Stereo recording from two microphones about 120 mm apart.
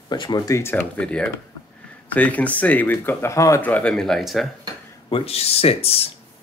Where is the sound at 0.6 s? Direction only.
20° left (ahead or behind).